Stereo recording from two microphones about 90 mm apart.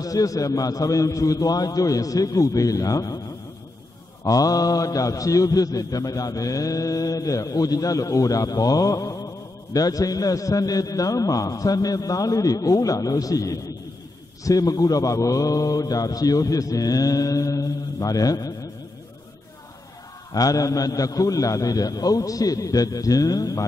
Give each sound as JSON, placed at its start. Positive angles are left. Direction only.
{"t": 0.0, "sound": "a man's voice", "side_deg": 40}
{"t": 4.2, "sound": "a man's voice", "side_deg": 40}
{"t": 20.3, "sound": "a man's voice", "side_deg": 40}